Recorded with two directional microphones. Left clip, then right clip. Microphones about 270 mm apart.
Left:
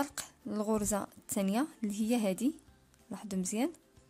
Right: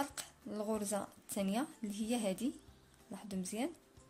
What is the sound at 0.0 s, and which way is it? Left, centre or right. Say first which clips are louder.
A woman's voice: left 4 dB; left.